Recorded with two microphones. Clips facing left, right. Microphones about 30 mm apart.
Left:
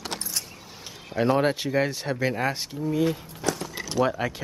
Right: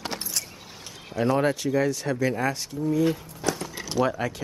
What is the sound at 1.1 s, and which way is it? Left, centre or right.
Speech, left.